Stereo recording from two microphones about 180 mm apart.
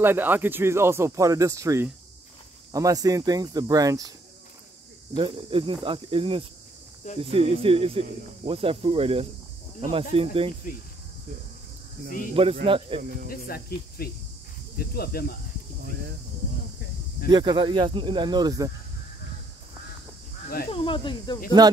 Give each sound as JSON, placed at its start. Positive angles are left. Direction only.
{"t": 0.0, "sound": "speech", "side_deg": -10}
{"t": 5.1, "sound": "speech", "side_deg": -30}
{"t": 12.6, "sound": "speech", "side_deg": -30}
{"t": 14.0, "sound": "speech", "side_deg": 60}
{"t": 17.3, "sound": "speech", "side_deg": -25}
{"t": 20.7, "sound": "speech", "side_deg": 30}
{"t": 21.6, "sound": "speech", "side_deg": -20}